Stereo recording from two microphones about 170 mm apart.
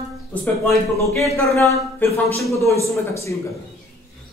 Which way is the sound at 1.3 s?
15° left (ahead or behind).